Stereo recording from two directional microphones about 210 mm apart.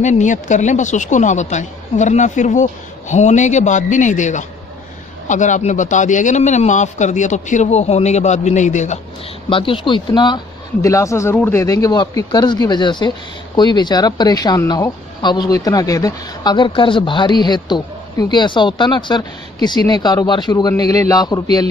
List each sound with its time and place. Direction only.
0.0 s speech: 35° left (ahead or behind); by 21.4 s 15° left (ahead or behind)